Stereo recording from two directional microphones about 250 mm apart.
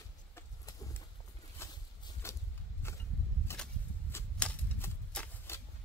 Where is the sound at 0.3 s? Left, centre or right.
Centre.